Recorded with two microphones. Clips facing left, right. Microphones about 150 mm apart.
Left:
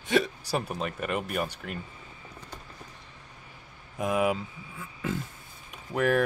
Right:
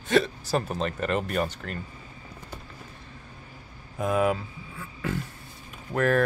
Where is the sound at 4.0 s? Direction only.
15° left (ahead or behind).